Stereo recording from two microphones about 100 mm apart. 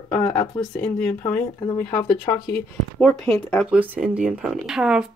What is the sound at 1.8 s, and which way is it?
Speech, 30° left (ahead or behind).